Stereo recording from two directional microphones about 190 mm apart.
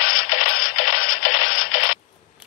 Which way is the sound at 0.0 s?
50° left (ahead or behind).